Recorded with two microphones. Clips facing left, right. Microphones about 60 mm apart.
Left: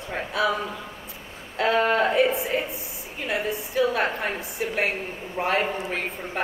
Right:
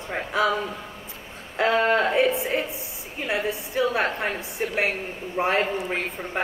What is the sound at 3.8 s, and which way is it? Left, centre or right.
Speech, right.